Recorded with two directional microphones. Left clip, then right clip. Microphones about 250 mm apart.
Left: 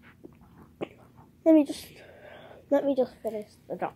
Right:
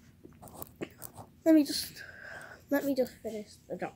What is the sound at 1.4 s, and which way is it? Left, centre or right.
Speech, centre.